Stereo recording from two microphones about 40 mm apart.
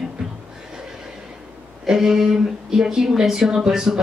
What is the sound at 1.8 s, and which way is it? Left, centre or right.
A woman's voice, centre.